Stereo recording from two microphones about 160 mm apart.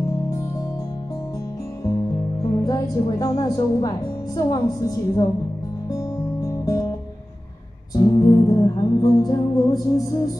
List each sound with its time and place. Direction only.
2.6 s speech: 25° left (ahead or behind)
5.9 s music: 20° left (ahead or behind)
7.9 s music: 25° left (ahead or behind)